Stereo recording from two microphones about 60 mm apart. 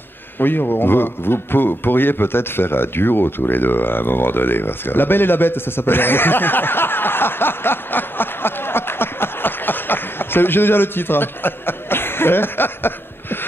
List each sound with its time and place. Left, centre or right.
0.4 s a man's voice: left